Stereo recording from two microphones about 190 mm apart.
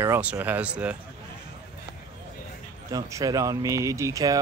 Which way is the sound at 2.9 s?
20° right (ahead or behind).